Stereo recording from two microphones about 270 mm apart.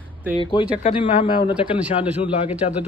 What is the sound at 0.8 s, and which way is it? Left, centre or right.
Speech, left.